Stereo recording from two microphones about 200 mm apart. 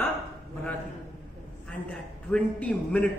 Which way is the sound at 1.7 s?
5° left (ahead or behind).